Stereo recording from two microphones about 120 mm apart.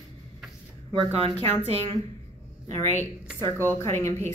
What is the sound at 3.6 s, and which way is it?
Speech, 20° left (ahead or behind).